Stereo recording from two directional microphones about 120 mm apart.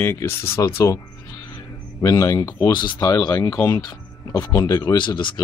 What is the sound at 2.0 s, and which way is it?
Speech, 30° left (ahead or behind).